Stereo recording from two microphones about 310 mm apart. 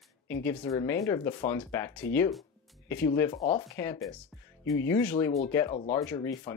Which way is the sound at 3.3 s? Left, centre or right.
Centre.